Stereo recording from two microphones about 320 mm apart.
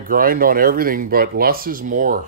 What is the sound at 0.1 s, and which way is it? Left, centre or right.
Speech, right.